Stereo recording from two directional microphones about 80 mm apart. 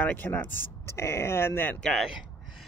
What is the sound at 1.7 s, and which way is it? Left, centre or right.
Speech, centre.